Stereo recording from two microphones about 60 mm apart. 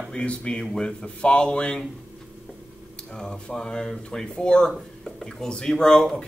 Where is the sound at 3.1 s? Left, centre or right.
Centre.